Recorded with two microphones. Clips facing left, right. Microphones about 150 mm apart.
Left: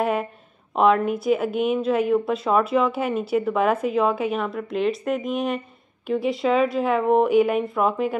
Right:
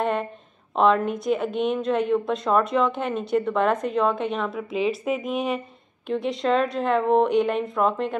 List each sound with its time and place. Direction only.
0.0 s a woman's voice: 5° left (ahead or behind)